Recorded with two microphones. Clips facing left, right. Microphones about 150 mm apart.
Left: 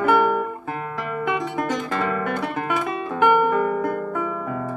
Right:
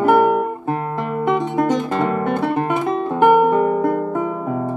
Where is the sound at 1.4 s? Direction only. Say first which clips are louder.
Right 7 dB; 25° right (ahead or behind).